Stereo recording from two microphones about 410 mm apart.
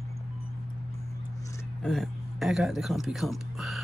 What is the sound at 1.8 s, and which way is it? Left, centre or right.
Speech, centre.